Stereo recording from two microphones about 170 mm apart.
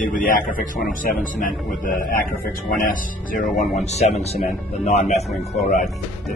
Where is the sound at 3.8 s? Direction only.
40° left (ahead or behind).